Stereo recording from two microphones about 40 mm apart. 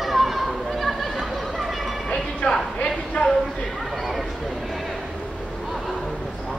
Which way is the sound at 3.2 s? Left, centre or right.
Left.